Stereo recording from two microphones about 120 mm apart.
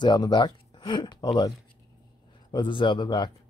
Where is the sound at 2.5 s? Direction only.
45° left (ahead or behind).